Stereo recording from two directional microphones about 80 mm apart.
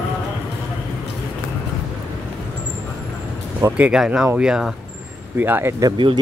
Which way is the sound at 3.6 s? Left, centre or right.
Right.